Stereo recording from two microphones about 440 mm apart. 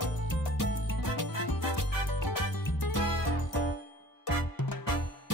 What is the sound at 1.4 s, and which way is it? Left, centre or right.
Music, left.